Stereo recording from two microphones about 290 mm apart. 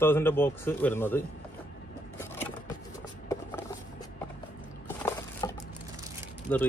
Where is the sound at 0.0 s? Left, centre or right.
Centre.